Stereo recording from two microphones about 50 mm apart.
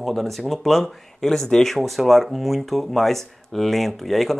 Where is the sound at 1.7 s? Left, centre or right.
Centre.